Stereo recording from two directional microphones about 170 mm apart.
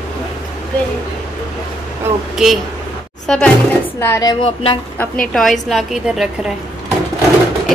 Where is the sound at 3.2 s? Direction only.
5° left (ahead or behind).